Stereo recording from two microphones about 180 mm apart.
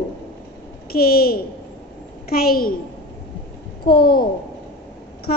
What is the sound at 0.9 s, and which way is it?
A woman's voice, 55° left (ahead or behind).